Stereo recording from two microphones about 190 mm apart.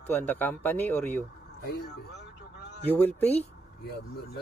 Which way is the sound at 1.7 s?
60° left (ahead or behind).